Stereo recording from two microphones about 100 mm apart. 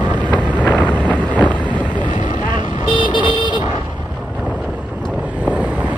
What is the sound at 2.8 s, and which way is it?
Vehicle, 50° left (ahead or behind).